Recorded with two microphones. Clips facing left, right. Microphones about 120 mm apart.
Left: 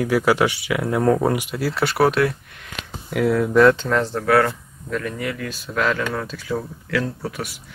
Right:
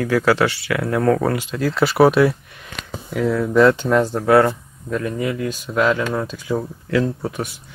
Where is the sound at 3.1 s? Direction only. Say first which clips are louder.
Left 1 dB; 10° left (ahead or behind).